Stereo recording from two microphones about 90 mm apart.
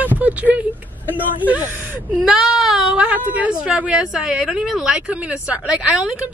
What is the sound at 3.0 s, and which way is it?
A woman's voice, 20° right (ahead or behind).